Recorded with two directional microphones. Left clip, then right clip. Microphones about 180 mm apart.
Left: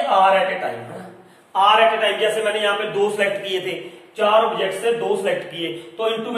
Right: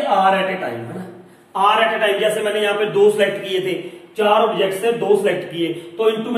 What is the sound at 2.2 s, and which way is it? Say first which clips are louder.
Speech: right 1 dB; 30° left (ahead or behind).